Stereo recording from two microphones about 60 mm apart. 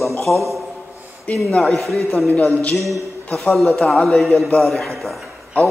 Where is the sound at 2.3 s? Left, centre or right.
Left.